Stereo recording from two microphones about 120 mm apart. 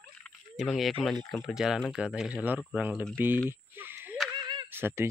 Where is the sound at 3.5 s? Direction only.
20° right (ahead or behind).